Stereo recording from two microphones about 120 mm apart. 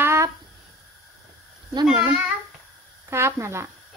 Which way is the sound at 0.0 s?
25° right (ahead or behind).